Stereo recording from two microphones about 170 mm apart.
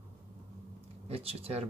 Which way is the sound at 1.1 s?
35° right (ahead or behind).